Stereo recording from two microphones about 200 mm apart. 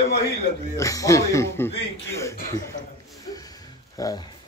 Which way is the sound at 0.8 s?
15° left (ahead or behind).